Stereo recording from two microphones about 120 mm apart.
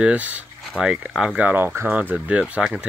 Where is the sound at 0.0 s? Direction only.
10° right (ahead or behind).